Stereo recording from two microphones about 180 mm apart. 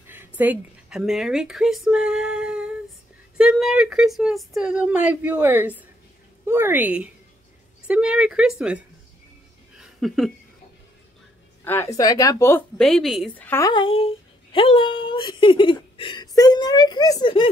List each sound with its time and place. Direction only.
0.0 s a woman's voice: 10° right (ahead or behind)
9.8 s a sound: centre (ahead or behind)
11.6 s a woman's voice: 15° left (ahead or behind)
13.5 s a woman's voice: 15° left (ahead or behind)
13.7 s speech: 30° left (ahead or behind)